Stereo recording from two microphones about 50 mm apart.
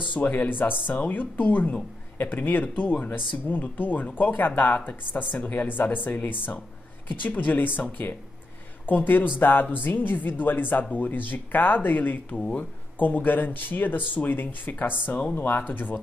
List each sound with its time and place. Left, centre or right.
0.1 s speech: left
12.4 s speech: centre
13.0 s speech: left